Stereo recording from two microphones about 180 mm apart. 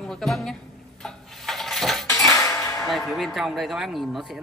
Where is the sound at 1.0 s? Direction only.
Centre (ahead or behind).